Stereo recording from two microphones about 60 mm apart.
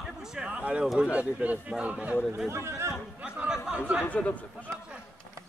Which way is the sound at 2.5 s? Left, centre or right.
Right.